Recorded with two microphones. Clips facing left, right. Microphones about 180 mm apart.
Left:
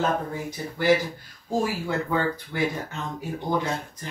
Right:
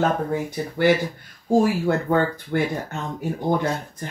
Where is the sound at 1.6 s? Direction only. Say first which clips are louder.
Right 5 dB; 55° right (ahead or behind).